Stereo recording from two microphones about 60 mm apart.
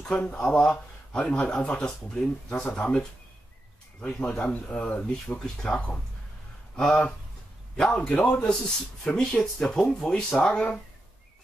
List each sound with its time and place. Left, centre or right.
0.1 s speech: left
0.4 s speech: centre
5.4 s speech: centre
6.8 s a man's voice: centre